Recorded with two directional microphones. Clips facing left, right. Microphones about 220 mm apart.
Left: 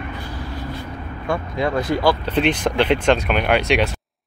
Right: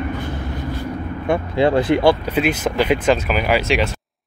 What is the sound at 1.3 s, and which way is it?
Speech, 30° right (ahead or behind).